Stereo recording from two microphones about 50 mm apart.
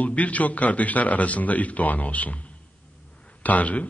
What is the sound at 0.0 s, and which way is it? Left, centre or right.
A man's voice, left.